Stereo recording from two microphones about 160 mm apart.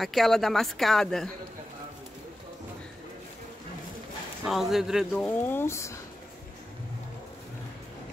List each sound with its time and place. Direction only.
0.0 s speech: centre (ahead or behind)
4.5 s speech: centre (ahead or behind)
5.2 s speech: 10° left (ahead or behind)